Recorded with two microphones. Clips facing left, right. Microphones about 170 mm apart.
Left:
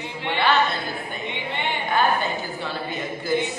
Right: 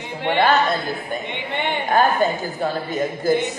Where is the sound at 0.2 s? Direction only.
50° right (ahead or behind).